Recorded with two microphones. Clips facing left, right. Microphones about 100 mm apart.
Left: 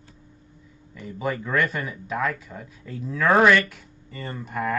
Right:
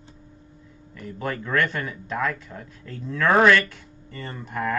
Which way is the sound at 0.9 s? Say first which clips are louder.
Left 2 dB; 5° left (ahead or behind).